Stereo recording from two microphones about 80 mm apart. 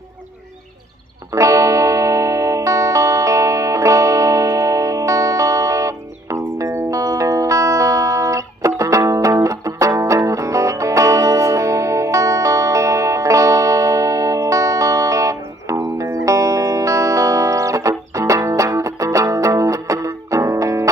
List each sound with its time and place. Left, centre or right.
1.3 s music: right